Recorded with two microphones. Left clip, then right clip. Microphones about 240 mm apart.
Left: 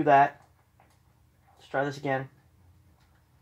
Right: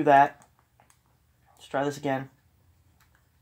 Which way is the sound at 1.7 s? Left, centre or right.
Right.